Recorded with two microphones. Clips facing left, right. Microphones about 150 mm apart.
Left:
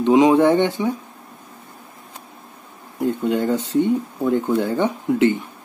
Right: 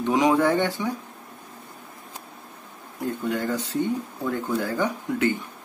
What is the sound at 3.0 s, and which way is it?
Speech, 25° left (ahead or behind).